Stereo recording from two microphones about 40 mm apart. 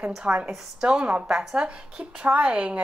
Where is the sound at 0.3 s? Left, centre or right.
Right.